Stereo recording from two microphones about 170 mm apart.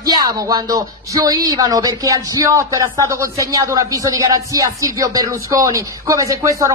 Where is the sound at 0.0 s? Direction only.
20° right (ahead or behind).